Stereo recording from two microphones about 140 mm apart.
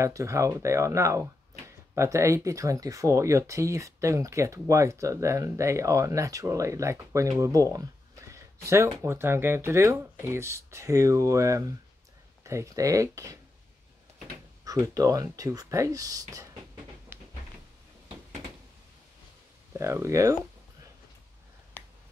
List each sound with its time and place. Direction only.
0.0 s speech: 20° right (ahead or behind)
14.6 s speech: 25° right (ahead or behind)
17.1 s a sound: 15° right (ahead or behind)
19.7 s speech: 20° right (ahead or behind)